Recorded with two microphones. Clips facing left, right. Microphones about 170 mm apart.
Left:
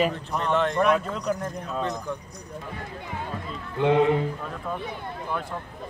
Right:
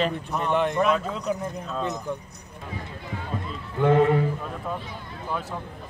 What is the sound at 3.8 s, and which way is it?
Speech, 45° right (ahead or behind).